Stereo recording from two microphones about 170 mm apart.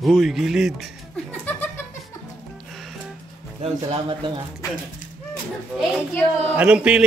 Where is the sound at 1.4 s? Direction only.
10° left (ahead or behind).